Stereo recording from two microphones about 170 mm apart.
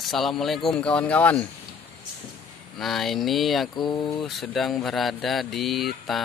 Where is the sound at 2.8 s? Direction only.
Centre (ahead or behind).